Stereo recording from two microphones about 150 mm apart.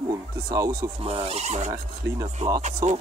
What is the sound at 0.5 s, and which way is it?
Speech, 25° right (ahead or behind).